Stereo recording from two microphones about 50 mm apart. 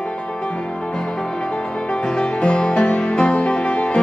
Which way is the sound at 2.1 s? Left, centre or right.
Centre.